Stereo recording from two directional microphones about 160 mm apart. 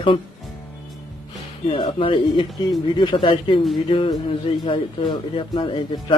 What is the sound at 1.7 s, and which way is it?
Speech, 35° left (ahead or behind).